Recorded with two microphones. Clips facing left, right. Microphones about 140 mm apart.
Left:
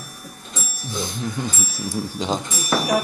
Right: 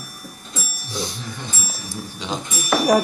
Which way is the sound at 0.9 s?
50° left (ahead or behind).